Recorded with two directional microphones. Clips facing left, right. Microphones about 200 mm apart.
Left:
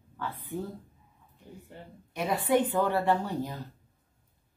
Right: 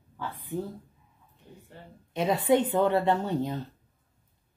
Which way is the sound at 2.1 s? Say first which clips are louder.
Right 3 dB; 25° right (ahead or behind).